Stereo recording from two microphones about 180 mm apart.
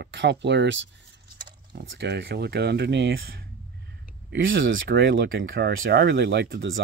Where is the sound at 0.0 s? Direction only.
75° right (ahead or behind).